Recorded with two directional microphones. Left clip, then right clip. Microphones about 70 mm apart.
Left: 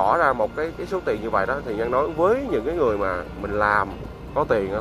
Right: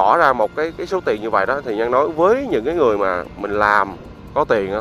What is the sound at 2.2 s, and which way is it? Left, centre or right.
Speech, right.